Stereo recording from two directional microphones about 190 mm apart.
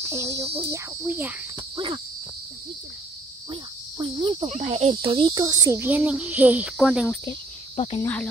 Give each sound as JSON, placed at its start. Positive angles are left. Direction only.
{"t": 0.1, "sound": "speech", "side_deg": -15}
{"t": 4.0, "sound": "cricket", "side_deg": -25}
{"t": 4.5, "sound": "speech", "side_deg": -35}
{"t": 7.7, "sound": "cricket", "side_deg": 30}
{"t": 8.0, "sound": "speech", "side_deg": 10}